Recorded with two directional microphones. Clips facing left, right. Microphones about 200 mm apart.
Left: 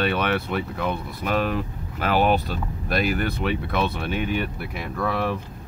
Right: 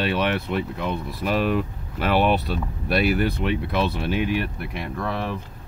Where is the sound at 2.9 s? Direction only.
45° left (ahead or behind).